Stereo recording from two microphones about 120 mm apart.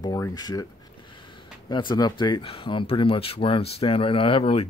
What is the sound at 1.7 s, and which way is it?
Speech, 40° left (ahead or behind).